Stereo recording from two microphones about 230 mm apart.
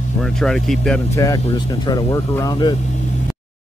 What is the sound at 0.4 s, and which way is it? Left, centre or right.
Speech, centre.